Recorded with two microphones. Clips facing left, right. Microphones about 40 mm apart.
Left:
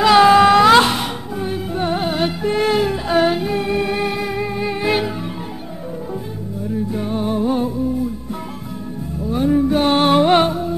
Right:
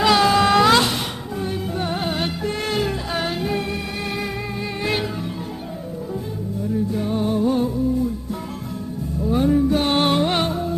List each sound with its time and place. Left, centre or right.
0.1 s a sound: left
0.7 s music: left
1.3 s music: centre
3.1 s music: left
3.3 s music: centre
3.7 s music: left
4.1 s music: centre
6.9 s music: centre
9.2 s music: centre
9.6 s music: centre
10.1 s music: left